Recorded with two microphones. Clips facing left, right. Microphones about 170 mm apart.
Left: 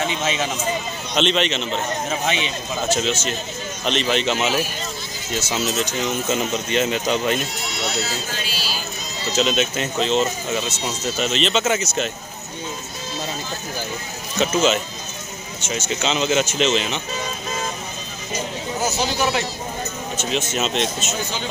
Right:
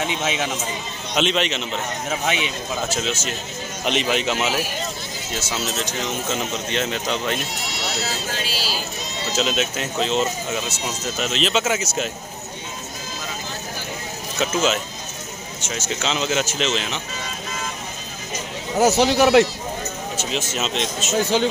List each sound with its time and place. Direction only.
0.0 s a man's voice: 10° right (ahead or behind); by 7.3 s 5° left (ahead or behind)
9.3 s speech: centre (ahead or behind)
14.4 s speech: centre (ahead or behind)
18.8 s speech: 70° right (ahead or behind)
20.2 s speech: centre (ahead or behind)